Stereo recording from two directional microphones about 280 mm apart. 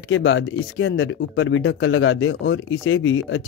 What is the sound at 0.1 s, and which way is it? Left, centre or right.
Speech, left.